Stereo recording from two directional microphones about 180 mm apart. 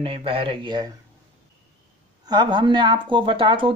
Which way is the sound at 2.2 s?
25° right (ahead or behind).